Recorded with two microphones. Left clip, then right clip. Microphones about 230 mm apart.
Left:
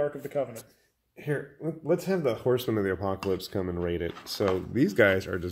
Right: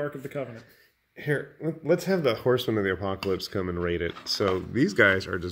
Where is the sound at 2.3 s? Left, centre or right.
Centre.